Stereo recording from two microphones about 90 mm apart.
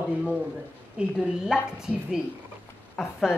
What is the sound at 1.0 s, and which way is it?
A woman's voice, 10° right (ahead or behind).